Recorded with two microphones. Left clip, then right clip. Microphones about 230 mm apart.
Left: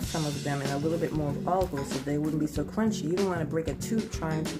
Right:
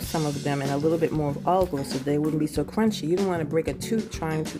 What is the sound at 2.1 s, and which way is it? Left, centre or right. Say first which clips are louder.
Speech: right 6 dB; right.